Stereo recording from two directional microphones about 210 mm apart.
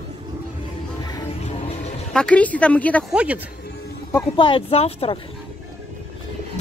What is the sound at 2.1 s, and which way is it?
A woman's voice, 5° left (ahead or behind).